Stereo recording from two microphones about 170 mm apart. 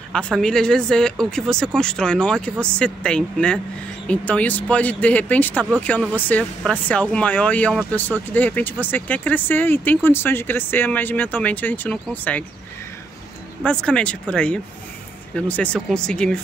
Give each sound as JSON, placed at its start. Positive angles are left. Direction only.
{"t": 0.1, "sound": "speech", "side_deg": 5}
{"t": 13.7, "sound": "speech", "side_deg": 5}